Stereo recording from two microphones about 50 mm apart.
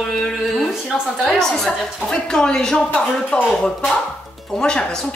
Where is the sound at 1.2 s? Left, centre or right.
Centre.